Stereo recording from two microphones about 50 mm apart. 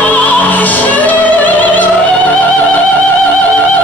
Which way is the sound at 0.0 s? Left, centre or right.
Left.